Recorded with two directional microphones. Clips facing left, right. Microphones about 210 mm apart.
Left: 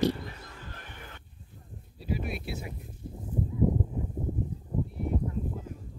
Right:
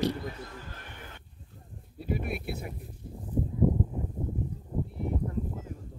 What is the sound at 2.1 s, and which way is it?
Speech, 55° right (ahead or behind).